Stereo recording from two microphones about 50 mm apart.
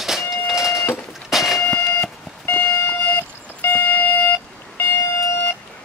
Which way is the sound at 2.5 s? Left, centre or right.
Left.